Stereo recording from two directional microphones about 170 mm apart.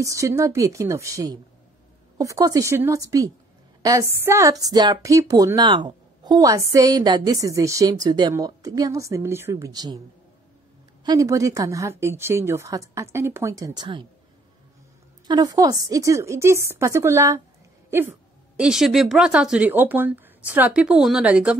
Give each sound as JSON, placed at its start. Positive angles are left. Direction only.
{"t": 0.0, "sound": "a woman's voice", "side_deg": -20}
{"t": 11.1, "sound": "a woman's voice", "side_deg": -20}
{"t": 15.2, "sound": "a woman's voice", "side_deg": -25}
{"t": 18.6, "sound": "speech", "side_deg": -5}